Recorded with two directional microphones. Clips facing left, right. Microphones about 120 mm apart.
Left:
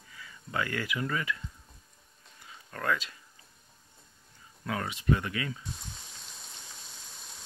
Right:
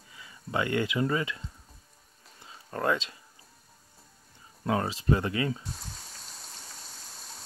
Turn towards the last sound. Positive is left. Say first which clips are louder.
# right 3 dB
turn(degrees=-30)  # may be behind; listen again after turning